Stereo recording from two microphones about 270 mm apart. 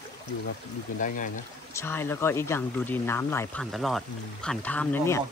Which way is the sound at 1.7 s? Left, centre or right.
Centre.